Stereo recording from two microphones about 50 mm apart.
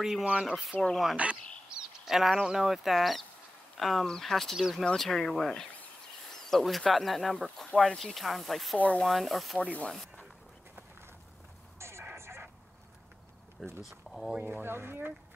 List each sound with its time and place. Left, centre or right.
0.2 s speech: right
0.7 s speech: centre
1.1 s a sound: right
2.4 s speech: centre
8.7 s speech: left
9.0 s speech: centre
9.6 s speech: left
11.8 s radio: right
12.2 s vehicle: right
13.8 s speech: centre
14.4 s speech: right